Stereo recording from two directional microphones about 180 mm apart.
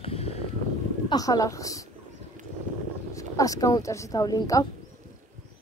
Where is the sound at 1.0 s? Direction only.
20° left (ahead or behind).